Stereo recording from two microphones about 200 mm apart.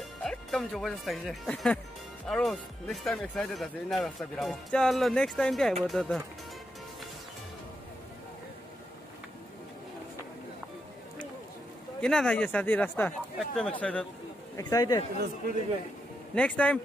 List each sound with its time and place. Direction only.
0.2 s speech: centre (ahead or behind)
12.0 s speech: 5° left (ahead or behind)
14.6 s speech: 20° left (ahead or behind)
16.3 s speech: 5° left (ahead or behind)